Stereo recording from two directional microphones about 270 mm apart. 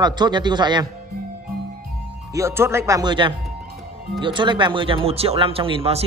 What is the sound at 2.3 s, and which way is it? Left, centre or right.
A man's voice, centre.